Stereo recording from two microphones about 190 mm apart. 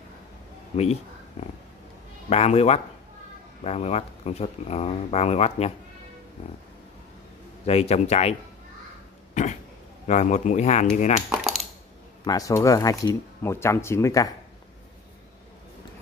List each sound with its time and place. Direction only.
1.4 s speech: 35° left (ahead or behind)
7.6 s speech: 35° left (ahead or behind)
9.3 s throat clearing: 40° left (ahead or behind)
10.0 s speech: 35° left (ahead or behind)
11.2 s coin: centre (ahead or behind)
12.3 s speech: 20° left (ahead or behind)